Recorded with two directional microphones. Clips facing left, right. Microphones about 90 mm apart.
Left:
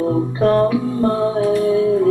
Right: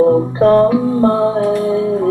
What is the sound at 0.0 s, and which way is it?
Music, 35° right (ahead or behind).